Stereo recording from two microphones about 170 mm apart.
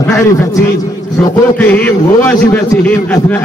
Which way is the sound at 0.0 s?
15° left (ahead or behind).